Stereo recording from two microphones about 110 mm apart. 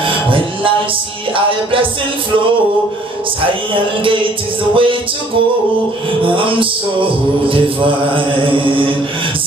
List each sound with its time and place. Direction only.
0.0 s music: 50° right (ahead or behind)
1.3 s mantra: 55° right (ahead or behind)
4.7 s mantra: 50° right (ahead or behind)